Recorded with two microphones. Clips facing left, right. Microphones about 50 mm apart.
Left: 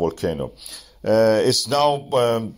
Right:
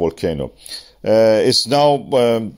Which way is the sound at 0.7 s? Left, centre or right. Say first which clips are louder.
Right 4 dB; right.